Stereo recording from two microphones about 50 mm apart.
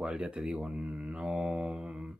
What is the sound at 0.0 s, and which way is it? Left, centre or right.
Speech, right.